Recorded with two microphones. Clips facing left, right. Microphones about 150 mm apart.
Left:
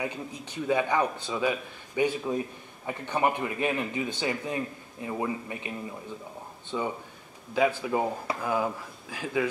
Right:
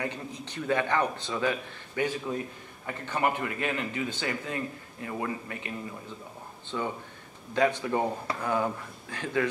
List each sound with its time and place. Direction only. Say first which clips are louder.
0.0 s speech: left 1 dB; 10° left (ahead or behind)